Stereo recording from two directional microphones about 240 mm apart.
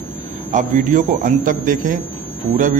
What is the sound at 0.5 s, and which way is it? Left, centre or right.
A man's voice, right.